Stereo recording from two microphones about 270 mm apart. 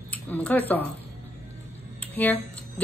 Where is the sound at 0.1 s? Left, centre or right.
Centre.